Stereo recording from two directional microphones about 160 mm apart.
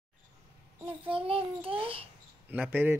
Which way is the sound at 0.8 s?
35° right (ahead or behind).